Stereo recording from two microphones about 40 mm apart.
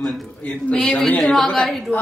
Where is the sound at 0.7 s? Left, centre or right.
Left.